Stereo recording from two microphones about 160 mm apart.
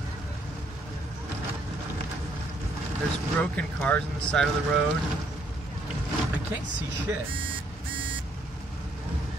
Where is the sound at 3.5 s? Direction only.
10° left (ahead or behind).